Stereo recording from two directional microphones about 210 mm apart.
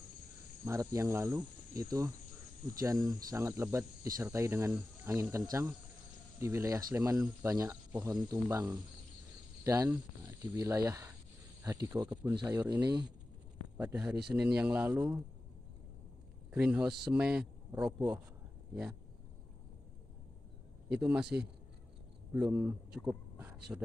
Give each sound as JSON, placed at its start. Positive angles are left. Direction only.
{"t": 0.7, "sound": "speech", "side_deg": -15}
{"t": 12.4, "sound": "speech", "side_deg": -20}
{"t": 13.7, "sound": "speech", "side_deg": -5}
{"t": 16.5, "sound": "speech", "side_deg": -5}
{"t": 20.9, "sound": "speech", "side_deg": -5}
{"t": 22.5, "sound": "speech", "side_deg": -5}